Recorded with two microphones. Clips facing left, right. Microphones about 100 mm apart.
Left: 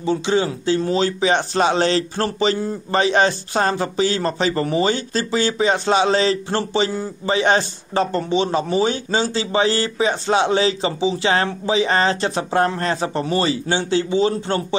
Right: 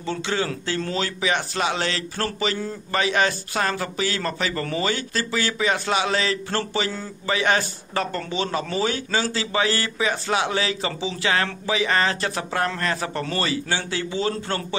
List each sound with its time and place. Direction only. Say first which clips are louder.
0.0 s a man's voice: left 7 dB; 20° left (ahead or behind)